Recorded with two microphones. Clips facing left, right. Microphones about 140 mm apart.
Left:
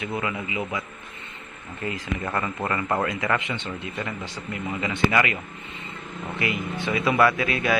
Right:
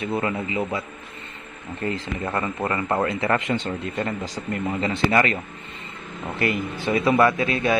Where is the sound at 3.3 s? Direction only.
40° right (ahead or behind).